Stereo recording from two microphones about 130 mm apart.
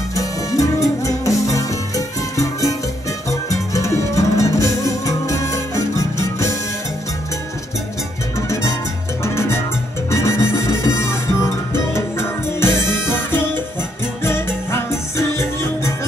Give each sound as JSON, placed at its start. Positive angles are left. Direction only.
{"t": 0.1, "sound": "music", "side_deg": 25}
{"t": 8.4, "sound": "music", "side_deg": 25}